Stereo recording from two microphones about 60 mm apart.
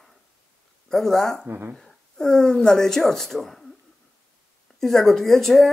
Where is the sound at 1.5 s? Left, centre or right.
Right.